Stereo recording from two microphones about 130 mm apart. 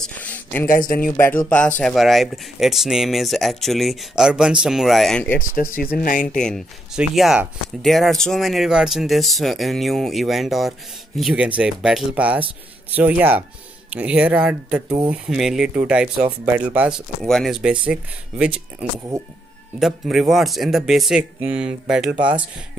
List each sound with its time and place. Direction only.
0.0 s a sound: 10° left (ahead or behind)
0.7 s speech: 90° left
1.8 s speech: 5° left (ahead or behind)
5.3 s speech: 90° left
6.3 s speech: 5° left (ahead or behind); by 16.9 s 10° right (ahead or behind)
17.2 s speech: centre (ahead or behind)